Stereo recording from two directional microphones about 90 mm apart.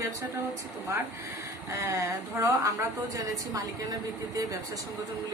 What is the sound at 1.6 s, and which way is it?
A woman's voice, 35° right (ahead or behind).